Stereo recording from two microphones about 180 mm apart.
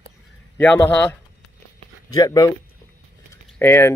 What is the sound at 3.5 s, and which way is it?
Speech, 15° left (ahead or behind).